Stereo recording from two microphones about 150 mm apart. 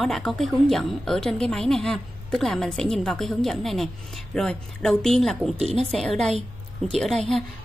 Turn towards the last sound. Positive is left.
turn(degrees=5)  # may be behind; listen again after turning